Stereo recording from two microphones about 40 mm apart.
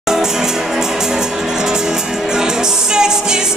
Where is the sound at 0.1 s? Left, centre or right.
Centre.